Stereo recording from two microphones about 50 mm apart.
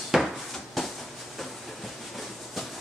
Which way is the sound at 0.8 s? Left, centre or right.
Centre.